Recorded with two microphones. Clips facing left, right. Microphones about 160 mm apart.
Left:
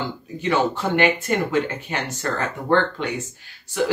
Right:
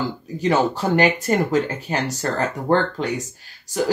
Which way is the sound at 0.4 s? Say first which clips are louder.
Right 2 dB; 40° right (ahead or behind).